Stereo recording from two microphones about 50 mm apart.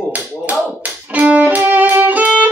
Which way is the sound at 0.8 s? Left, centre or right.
Right.